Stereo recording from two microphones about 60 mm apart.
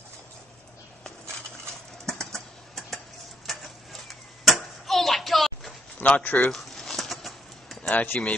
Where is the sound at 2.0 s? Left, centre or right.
Centre.